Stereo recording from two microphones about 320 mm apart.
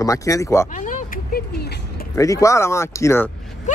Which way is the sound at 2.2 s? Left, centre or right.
Centre.